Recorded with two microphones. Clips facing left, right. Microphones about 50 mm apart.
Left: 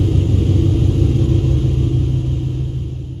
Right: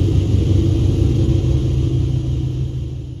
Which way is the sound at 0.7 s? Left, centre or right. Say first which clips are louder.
Left 1 dB; centre.